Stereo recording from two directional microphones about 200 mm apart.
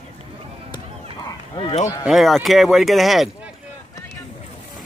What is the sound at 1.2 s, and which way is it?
Bow-wow, 25° left (ahead or behind).